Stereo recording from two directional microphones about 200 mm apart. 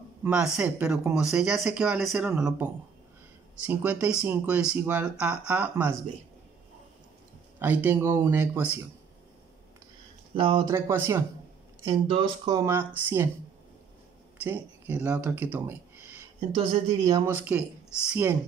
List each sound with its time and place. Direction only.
0.2 s speech: 5° right (ahead or behind)
3.6 s speech: 10° right (ahead or behind)
7.5 s speech: 10° right (ahead or behind)
10.3 s speech: 25° right (ahead or behind)
10.7 s speech: 15° right (ahead or behind)
11.9 s speech: 25° right (ahead or behind); by 13.3 s 10° right (ahead or behind)
14.4 s speech: 10° right (ahead or behind)
16.3 s a woman's voice: 30° right (ahead or behind)
17.3 s speech: 10° right (ahead or behind)